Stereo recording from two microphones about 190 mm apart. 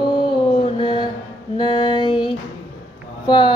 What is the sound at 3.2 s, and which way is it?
Speech, 25° left (ahead or behind).